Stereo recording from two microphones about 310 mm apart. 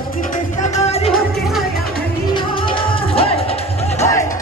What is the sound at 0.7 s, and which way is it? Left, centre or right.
Music, centre.